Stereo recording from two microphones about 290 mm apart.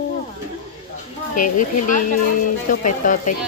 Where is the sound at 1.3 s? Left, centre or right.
Left.